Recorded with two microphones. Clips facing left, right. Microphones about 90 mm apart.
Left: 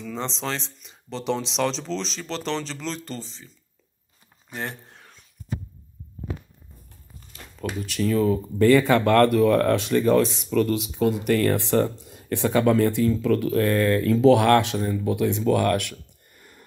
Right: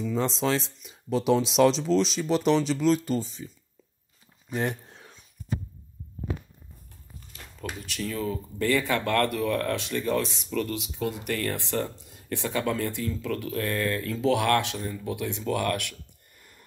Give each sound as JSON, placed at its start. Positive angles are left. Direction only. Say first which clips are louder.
{"t": 0.0, "sound": "speech", "louder": "right 4 dB", "side_deg": -5}
{"t": 4.5, "sound": "speech", "louder": "right 4 dB", "side_deg": -15}
{"t": 7.6, "sound": "speech", "louder": "left 8 dB", "side_deg": 45}